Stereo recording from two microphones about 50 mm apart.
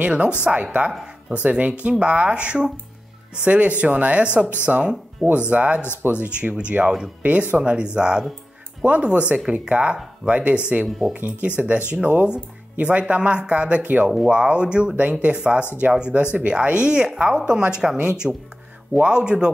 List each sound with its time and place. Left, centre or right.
0.0 s speech: right
10.9 s speech: centre
11.4 s speech: right